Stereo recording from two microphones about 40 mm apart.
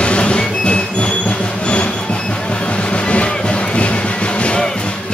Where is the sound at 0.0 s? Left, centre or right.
Left.